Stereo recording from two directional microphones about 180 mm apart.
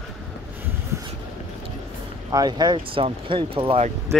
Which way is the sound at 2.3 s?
20° right (ahead or behind).